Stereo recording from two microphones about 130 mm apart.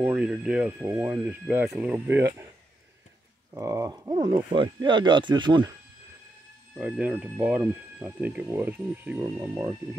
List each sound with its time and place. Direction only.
0.0 s speech: 10° right (ahead or behind)
3.5 s speech: 25° right (ahead or behind)
4.1 s speech: 35° right (ahead or behind)
6.8 s speech: 10° right (ahead or behind)